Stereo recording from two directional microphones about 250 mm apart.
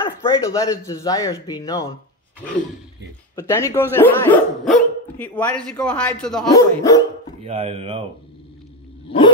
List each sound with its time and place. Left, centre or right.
0.0 s speech: centre
3.3 s speech: centre
6.5 s speech: centre
7.4 s speech: right